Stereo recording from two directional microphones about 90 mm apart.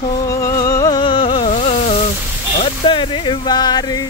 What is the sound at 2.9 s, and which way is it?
Speech, 65° left (ahead or behind).